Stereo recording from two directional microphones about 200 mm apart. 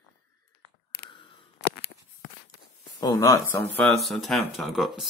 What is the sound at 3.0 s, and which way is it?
Speech, 20° left (ahead or behind).